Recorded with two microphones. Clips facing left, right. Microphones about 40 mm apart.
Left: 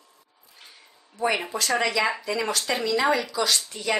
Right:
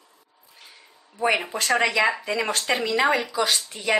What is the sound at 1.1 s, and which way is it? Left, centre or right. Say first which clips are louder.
Speech: right 2 dB; right.